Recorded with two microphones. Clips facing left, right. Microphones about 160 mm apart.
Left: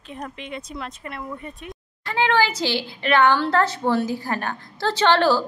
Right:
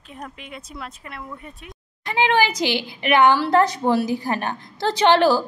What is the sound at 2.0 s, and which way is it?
A woman's voice, 15° right (ahead or behind).